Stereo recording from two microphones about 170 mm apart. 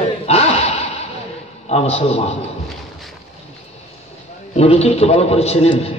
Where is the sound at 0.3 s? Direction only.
40° left (ahead or behind).